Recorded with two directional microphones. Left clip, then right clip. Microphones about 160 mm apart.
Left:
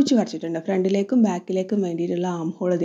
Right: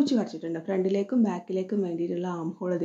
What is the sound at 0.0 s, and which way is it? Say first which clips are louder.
Speech: left 6 dB; 45° left (ahead or behind).